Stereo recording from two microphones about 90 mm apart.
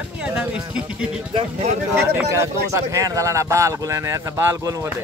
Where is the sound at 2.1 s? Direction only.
30° right (ahead or behind).